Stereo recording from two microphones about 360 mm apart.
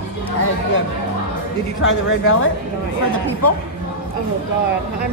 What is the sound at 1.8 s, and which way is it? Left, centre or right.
Speech, left.